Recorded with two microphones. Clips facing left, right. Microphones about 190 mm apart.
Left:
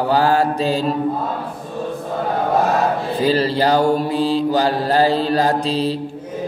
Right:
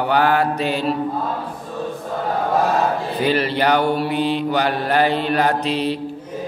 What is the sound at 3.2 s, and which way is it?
Mantra, 35° left (ahead or behind).